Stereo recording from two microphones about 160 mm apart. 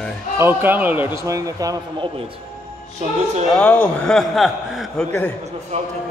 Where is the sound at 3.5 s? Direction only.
5° left (ahead or behind).